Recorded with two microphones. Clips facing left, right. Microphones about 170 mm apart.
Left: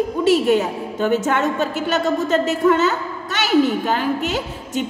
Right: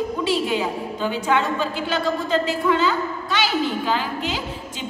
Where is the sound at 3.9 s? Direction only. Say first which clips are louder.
Left 4 dB; 50° left (ahead or behind).